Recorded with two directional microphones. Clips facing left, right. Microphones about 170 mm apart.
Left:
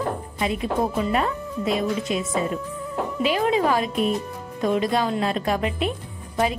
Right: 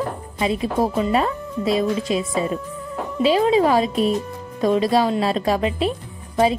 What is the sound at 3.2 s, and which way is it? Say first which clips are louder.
A woman's voice: right 5 dB; 30° right (ahead or behind).